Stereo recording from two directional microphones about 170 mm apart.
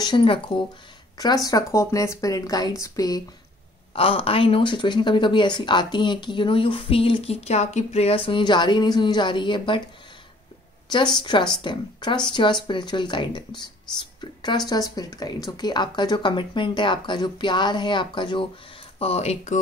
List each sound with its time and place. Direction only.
0.0 s speech: 30° left (ahead or behind)
3.9 s speech: 35° left (ahead or behind)
11.1 s speech: 25° left (ahead or behind)
14.2 s a sound: 25° left (ahead or behind)
14.7 s speech: 20° left (ahead or behind); by 19.6 s 40° left (ahead or behind)